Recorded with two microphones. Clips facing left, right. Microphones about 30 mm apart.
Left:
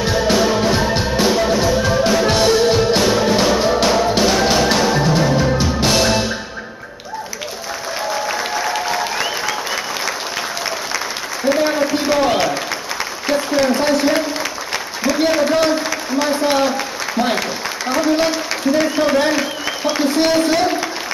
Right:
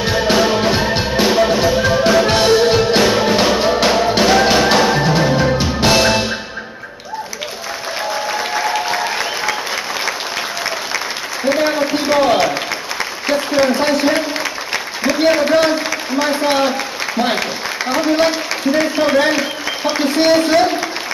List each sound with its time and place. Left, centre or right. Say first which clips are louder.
0.0 s music: right 1 dB; centre
8.1 s applause: right 1 dB; centre
11.4 s a sound: even; centre
13.3 s applause: right 1 dB; centre
15.3 s a sound: right 2 dB; centre
17.2 s applause: right 1 dB; centre